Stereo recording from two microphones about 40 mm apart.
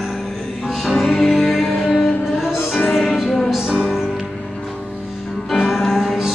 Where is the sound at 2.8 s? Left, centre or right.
Centre.